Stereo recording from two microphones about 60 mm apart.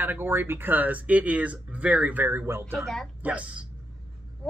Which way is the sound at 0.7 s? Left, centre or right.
Right.